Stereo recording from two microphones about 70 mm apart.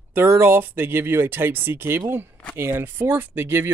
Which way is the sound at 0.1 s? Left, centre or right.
Right.